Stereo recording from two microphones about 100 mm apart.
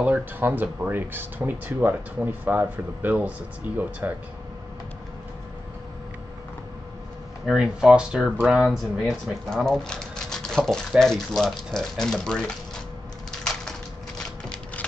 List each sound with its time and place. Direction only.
0.0 s speech: 20° right (ahead or behind)
7.4 s speech: 5° right (ahead or behind)